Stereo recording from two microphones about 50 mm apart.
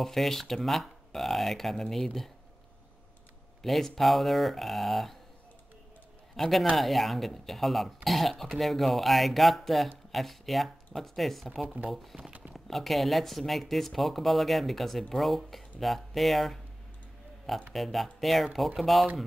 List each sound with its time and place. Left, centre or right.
0.0 s speech: centre
3.6 s speech: centre
6.3 s a man's voice: centre
11.6 s speech: right
11.9 s speech: centre
12.2 s a sound: right
12.5 s speech: centre
17.7 s speech: centre